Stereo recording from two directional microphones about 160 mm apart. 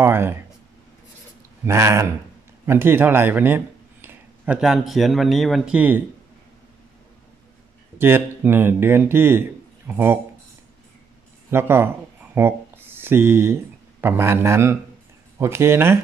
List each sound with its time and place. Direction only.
0.0 s speech: 15° right (ahead or behind)
1.6 s speech: 15° right (ahead or behind)
8.5 s speech: 15° right (ahead or behind)
11.5 s speech: 15° right (ahead or behind)